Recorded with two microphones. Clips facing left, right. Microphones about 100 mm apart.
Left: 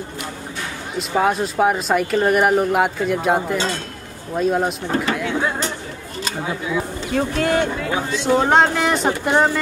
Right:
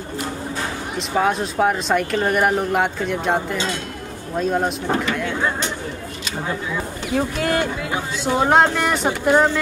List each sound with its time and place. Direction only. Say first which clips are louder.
0.9 s speech: left 1 dB; 5° left (ahead or behind)
3.5 s speech: left 2 dB; 35° left (ahead or behind)
4.4 s speech: left 2 dB; centre (ahead or behind)
7.2 s speech: left 2 dB; 5° right (ahead or behind)